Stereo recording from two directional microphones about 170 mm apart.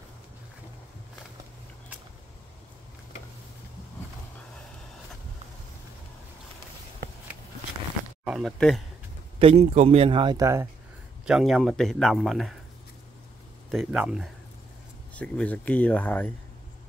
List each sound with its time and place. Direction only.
8.3 s speech: centre (ahead or behind)
9.4 s a man's voice: 35° right (ahead or behind); by 10.7 s 20° right (ahead or behind)
11.2 s speech: centre (ahead or behind)
13.7 s speech: centre (ahead or behind)
15.1 s speech: 10° left (ahead or behind)